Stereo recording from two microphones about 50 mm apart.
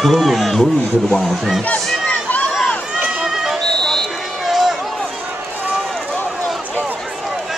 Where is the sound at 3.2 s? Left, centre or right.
Centre.